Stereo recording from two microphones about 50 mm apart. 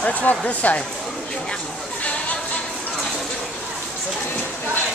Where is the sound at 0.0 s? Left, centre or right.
Left.